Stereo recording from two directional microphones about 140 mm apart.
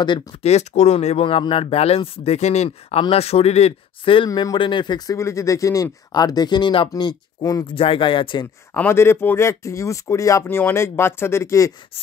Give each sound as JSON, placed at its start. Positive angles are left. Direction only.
{"t": 0.0, "sound": "speech", "side_deg": 30}
{"t": 0.4, "sound": "speech", "side_deg": 50}
{"t": 7.7, "sound": "speech", "side_deg": 40}
{"t": 8.7, "sound": "speech", "side_deg": 15}